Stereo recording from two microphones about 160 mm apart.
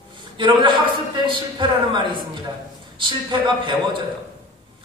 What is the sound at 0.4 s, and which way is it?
A man's voice, 30° right (ahead or behind).